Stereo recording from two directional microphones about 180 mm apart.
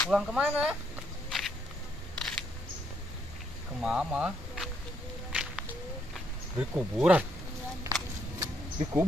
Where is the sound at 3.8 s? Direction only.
5° right (ahead or behind).